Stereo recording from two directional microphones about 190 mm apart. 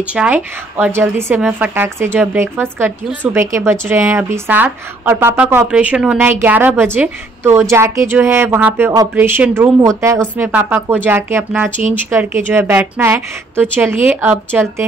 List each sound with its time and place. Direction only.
0.0 s a woman's voice: 5° right (ahead or behind)